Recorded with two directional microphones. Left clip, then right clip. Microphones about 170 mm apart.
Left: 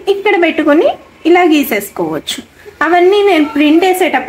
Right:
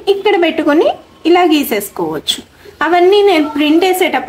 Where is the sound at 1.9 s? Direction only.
15° left (ahead or behind).